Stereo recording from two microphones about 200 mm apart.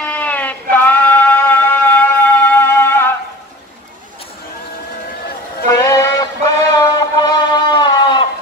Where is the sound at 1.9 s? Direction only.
10° left (ahead or behind).